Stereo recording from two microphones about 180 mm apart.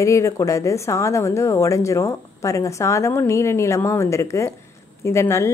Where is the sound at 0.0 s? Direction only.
15° left (ahead or behind).